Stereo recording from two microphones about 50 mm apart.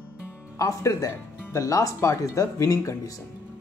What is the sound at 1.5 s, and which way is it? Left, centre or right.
Speech, left.